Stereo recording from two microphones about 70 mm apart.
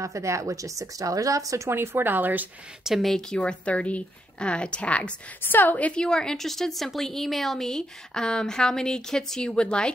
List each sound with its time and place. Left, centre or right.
0.0 s speech: right
1.7 s a woman's voice: right
2.8 s a woman's voice: centre